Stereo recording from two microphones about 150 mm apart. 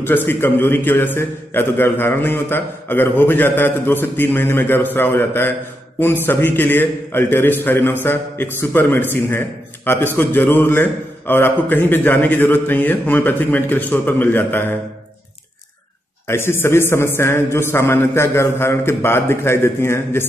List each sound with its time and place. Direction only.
0.0 s a man's voice: 15° left (ahead or behind)
16.3 s a man's voice: 15° left (ahead or behind)